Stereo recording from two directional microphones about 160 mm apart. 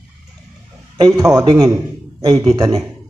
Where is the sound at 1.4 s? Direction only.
20° right (ahead or behind).